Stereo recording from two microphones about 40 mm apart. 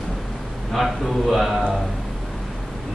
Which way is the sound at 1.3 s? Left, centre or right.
Centre.